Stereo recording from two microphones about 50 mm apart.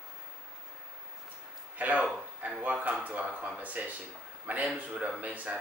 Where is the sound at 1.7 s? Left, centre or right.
Right.